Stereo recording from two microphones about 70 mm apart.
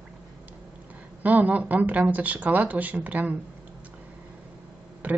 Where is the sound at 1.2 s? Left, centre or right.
Right.